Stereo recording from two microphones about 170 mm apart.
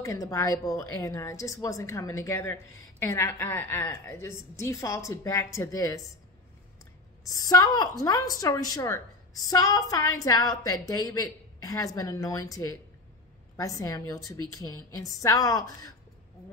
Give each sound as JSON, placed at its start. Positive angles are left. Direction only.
{"t": 0.0, "sound": "a woman's voice", "side_deg": 20}
{"t": 7.2, "sound": "a woman's voice", "side_deg": 20}